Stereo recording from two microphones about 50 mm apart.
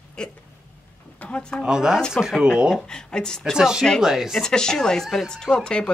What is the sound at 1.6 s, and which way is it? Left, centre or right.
Speech, centre.